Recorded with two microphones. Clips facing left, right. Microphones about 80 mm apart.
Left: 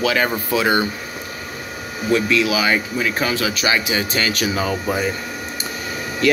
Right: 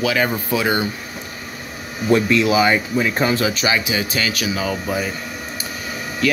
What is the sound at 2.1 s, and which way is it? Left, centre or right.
Speech, right.